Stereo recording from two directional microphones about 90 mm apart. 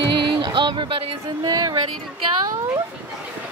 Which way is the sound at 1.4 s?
45° right (ahead or behind).